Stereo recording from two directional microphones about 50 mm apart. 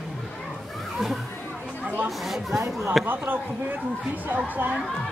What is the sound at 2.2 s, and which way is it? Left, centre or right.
Speech, centre.